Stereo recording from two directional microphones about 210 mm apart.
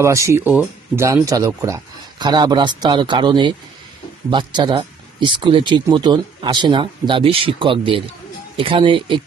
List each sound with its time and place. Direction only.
0.0 s speech: 15° right (ahead or behind)